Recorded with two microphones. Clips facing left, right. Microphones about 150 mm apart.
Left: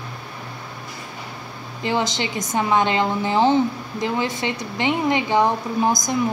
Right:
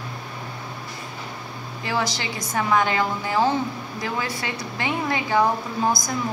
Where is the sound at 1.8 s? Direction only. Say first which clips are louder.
Left 4 dB; 20° left (ahead or behind).